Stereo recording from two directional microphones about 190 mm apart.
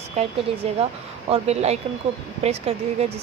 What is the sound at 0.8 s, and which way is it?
Speech, 35° right (ahead or behind).